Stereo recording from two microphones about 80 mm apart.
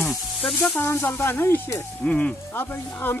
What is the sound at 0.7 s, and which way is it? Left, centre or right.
Speech, left.